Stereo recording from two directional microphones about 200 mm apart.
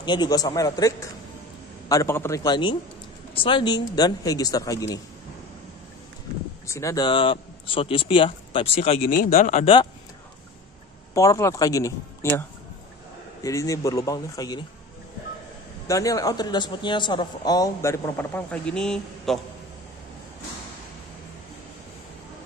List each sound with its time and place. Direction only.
0.0 s speech: 20° left (ahead or behind)
6.7 s speech: 15° left (ahead or behind); by 9.8 s 35° left (ahead or behind)
11.1 s speech: 15° left (ahead or behind)
15.9 s speech: 15° left (ahead or behind)